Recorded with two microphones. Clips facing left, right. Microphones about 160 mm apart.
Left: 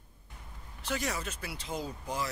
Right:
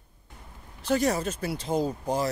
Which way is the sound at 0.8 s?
40° right (ahead or behind).